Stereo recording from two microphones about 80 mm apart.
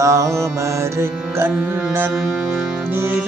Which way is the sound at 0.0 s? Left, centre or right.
Right.